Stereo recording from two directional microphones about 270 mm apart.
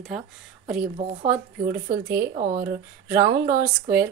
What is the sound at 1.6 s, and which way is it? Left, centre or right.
Speech, right.